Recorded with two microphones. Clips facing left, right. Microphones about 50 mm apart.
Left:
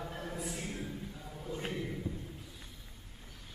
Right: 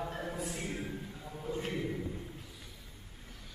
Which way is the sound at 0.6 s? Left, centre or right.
Right.